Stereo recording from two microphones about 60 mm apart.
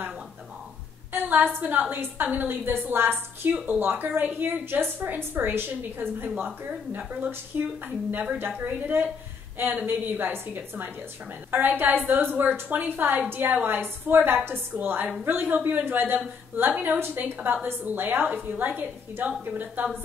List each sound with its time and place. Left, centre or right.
1.1 s a woman's voice: right
7.2 s a woman's voice: right